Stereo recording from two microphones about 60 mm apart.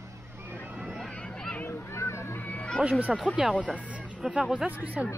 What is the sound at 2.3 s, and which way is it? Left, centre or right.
Music, left.